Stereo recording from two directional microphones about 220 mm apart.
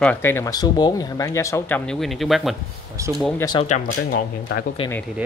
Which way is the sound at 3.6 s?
35° left (ahead or behind).